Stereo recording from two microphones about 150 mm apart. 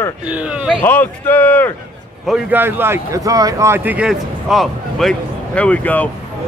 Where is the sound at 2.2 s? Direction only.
10° right (ahead or behind).